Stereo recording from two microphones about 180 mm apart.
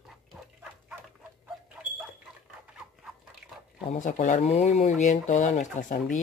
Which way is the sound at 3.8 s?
45° left (ahead or behind).